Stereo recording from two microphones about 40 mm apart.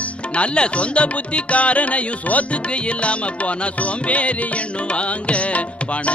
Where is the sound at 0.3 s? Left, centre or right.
Left.